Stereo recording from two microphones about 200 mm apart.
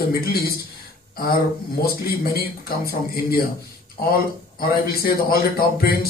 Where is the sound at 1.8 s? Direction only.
50° left (ahead or behind).